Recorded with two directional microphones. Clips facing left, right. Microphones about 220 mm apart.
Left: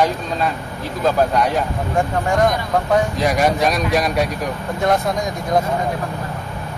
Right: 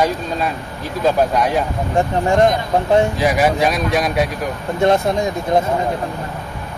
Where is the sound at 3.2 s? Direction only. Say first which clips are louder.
Right 1 dB; 5° right (ahead or behind).